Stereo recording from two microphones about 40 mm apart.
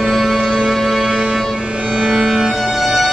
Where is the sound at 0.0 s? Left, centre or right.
Centre.